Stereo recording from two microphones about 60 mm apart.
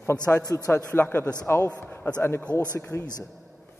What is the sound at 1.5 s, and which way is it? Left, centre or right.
Speech, left.